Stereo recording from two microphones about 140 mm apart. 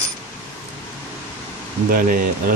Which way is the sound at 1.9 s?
80° right.